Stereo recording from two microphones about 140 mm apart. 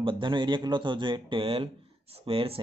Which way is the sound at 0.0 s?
35° right (ahead or behind).